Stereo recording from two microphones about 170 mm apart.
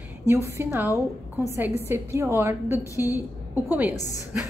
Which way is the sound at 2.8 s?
20° left (ahead or behind).